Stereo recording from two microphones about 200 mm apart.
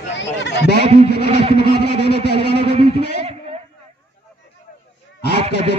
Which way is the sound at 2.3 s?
25° right (ahead or behind).